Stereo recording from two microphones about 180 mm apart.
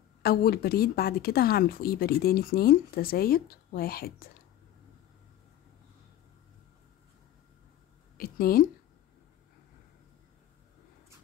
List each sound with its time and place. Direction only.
0.2 s speech: 60° left (ahead or behind)
8.2 s speech: 55° left (ahead or behind)